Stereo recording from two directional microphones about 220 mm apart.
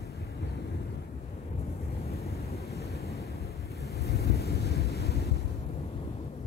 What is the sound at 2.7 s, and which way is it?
Waves, 45° left (ahead or behind).